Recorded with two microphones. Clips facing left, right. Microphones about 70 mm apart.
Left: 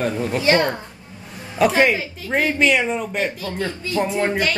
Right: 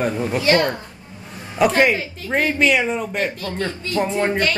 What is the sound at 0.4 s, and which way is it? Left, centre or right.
Speech, left.